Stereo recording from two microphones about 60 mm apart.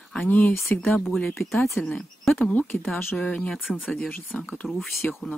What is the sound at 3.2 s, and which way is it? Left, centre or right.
Speech, centre.